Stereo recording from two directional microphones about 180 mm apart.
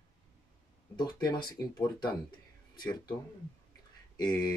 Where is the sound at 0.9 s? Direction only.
25° left (ahead or behind).